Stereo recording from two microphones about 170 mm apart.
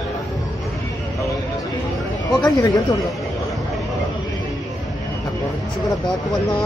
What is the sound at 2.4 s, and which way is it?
Speech, 20° left (ahead or behind).